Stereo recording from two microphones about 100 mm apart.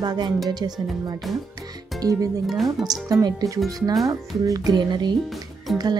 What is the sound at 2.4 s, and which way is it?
Speech, centre (ahead or behind).